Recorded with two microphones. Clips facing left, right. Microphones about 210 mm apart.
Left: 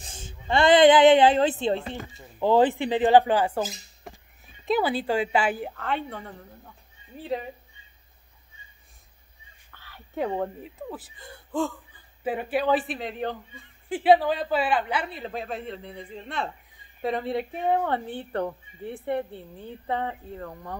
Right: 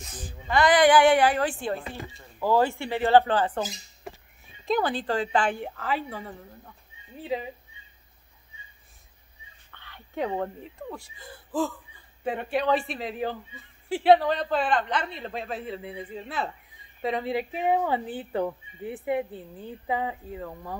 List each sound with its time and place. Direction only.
0.0 s a woman's voice: 25° left (ahead or behind)
1.8 s a man's voice: centre (ahead or behind)
2.3 s a man's voice: 20° left (ahead or behind); by 7.5 s centre (ahead or behind)
9.7 s a man's voice: 5° left (ahead or behind)